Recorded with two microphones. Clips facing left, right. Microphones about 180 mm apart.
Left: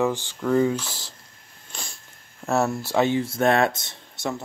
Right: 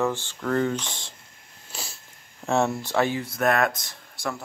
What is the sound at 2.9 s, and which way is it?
Speech, 25° left (ahead or behind).